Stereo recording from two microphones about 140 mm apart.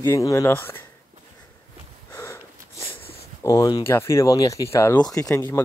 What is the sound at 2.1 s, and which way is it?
Sniff, 20° left (ahead or behind).